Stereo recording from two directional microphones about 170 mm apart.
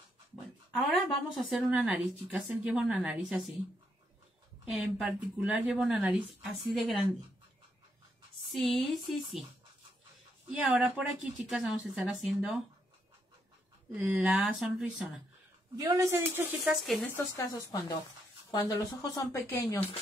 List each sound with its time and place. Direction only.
1.3 s a woman's voice: centre (ahead or behind)
4.6 s a woman's voice: centre (ahead or behind)
8.5 s a woman's voice: centre (ahead or behind)
10.5 s a woman's voice: 5° right (ahead or behind)
13.9 s a woman's voice: 5° right (ahead or behind)
15.7 s a woman's voice: 20° right (ahead or behind)
16.8 s a woman's voice: centre (ahead or behind)
17.1 s speech: 15° left (ahead or behind)